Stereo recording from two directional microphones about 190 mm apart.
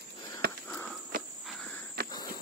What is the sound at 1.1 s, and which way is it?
Cricket, 45° right (ahead or behind).